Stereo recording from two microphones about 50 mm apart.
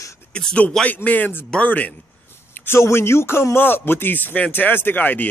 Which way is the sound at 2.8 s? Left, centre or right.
Left.